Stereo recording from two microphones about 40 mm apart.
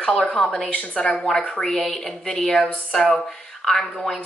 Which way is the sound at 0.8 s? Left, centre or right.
Left.